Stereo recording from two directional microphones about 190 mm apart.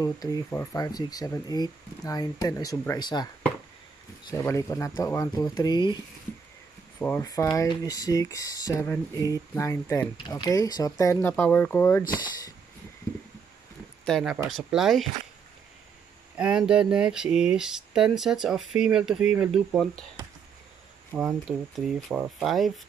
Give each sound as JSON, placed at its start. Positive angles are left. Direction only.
{"t": 0.0, "sound": "speech", "side_deg": 20}
{"t": 4.3, "sound": "speech", "side_deg": 15}
{"t": 7.0, "sound": "speech", "side_deg": 15}
{"t": 14.0, "sound": "speech", "side_deg": 5}
{"t": 16.3, "sound": "speech", "side_deg": -5}
{"t": 21.1, "sound": "speech", "side_deg": -5}